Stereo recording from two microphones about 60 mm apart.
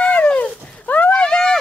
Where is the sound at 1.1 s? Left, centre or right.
Centre.